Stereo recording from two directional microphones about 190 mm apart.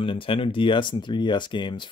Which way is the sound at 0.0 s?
30° left (ahead or behind).